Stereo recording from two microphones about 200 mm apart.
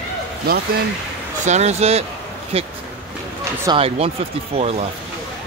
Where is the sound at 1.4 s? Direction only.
35° right (ahead or behind).